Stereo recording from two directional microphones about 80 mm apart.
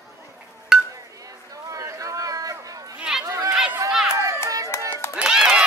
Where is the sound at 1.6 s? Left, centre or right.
Right.